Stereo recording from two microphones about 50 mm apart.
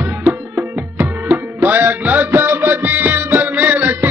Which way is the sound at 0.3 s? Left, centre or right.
Right.